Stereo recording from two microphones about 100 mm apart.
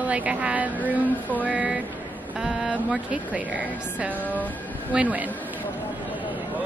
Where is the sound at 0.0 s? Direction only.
15° right (ahead or behind).